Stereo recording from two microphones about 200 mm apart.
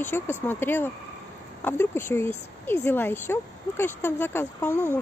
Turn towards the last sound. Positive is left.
turn(degrees=10)  # may be behind; listen again after turning